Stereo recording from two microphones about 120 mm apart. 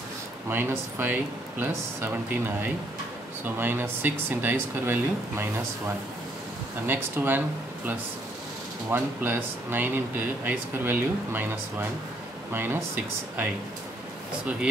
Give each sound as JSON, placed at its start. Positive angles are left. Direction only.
{"t": 0.5, "sound": "speech", "side_deg": -20}
{"t": 6.9, "sound": "speech", "side_deg": -15}
{"t": 8.9, "sound": "speech", "side_deg": -15}
{"t": 12.5, "sound": "speech", "side_deg": -20}